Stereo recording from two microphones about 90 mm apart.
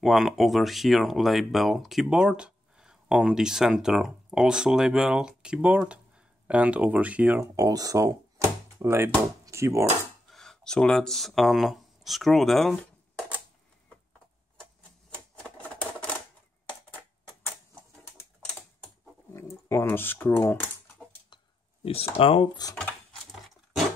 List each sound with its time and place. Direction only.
0.0 s speech: 5° right (ahead or behind)
7.5 s speech: 40° right (ahead or behind)
8.8 s speech: 25° right (ahead or behind)
10.3 s speech: 5° left (ahead or behind)
15.4 s typewriter: 15° left (ahead or behind)
19.3 s typing: 30° left (ahead or behind)
21.8 s speech: 90° left